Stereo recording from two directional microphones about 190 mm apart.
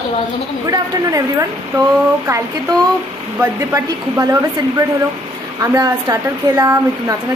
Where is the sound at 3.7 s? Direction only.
15° right (ahead or behind).